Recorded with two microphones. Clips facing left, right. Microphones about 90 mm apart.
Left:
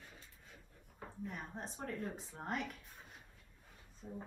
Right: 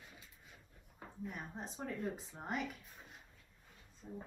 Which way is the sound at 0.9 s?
5° right (ahead or behind).